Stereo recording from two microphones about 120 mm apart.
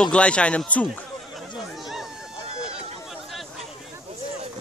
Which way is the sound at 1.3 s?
Centre (ahead or behind).